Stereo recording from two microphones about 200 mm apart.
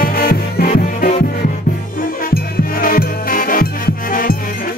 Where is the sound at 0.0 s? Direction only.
45° left (ahead or behind).